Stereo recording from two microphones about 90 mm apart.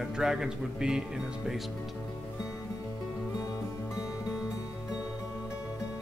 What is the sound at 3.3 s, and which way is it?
Music, 40° left (ahead or behind).